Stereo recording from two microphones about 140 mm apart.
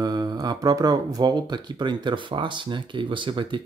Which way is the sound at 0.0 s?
30° right (ahead or behind).